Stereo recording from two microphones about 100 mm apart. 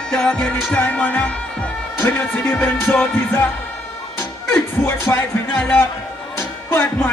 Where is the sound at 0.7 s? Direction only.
15° left (ahead or behind).